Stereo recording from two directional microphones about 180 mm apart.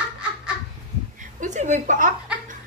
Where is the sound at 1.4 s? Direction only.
40° right (ahead or behind).